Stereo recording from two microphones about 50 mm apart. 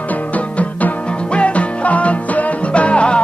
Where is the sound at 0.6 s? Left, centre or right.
Left.